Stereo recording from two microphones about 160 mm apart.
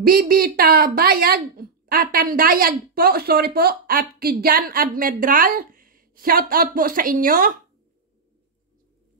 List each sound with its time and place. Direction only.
0.0 s a woman's voice: 65° right (ahead or behind)